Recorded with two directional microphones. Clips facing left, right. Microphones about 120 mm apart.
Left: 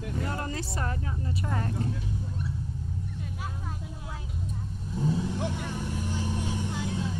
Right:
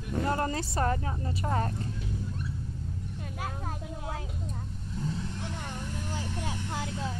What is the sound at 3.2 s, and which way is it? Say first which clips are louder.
Vehicle: right 1 dB; 60° right (ahead or behind).